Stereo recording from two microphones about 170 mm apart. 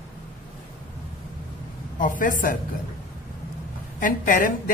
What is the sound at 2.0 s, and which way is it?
Speech, 50° left (ahead or behind).